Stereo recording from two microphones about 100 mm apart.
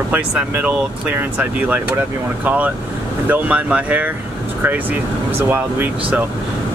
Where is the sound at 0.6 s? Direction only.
15° right (ahead or behind).